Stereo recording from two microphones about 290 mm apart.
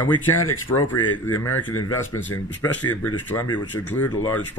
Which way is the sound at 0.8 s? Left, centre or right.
Centre.